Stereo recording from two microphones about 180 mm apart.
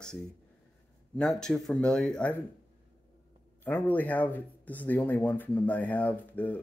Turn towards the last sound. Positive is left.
turn(degrees=10)  # may be behind; listen again after turning